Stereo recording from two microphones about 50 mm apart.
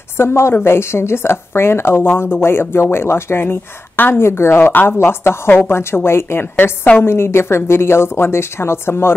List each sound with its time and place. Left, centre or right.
0.2 s a woman's voice: left